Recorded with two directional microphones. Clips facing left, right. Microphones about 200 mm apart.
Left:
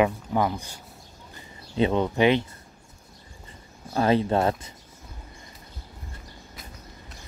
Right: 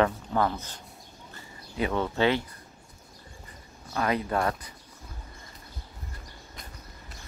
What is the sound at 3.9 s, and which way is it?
Speech, 30° left (ahead or behind).